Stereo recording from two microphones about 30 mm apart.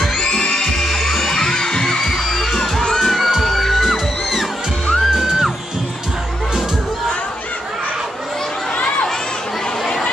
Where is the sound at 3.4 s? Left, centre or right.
Centre.